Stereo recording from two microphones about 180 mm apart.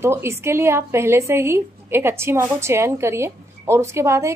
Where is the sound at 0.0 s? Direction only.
15° right (ahead or behind).